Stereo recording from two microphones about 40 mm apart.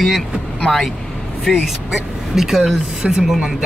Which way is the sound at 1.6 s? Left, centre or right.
Centre.